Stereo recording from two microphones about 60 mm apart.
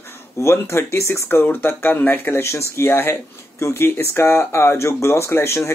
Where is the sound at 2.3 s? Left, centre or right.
Left.